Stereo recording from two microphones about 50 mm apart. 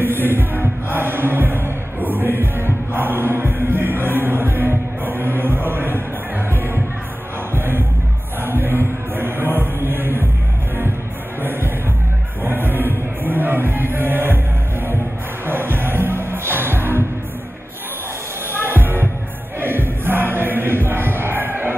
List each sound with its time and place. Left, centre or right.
0.0 s music: right
12.4 s music: right
15.4 s music: right
18.6 s music: right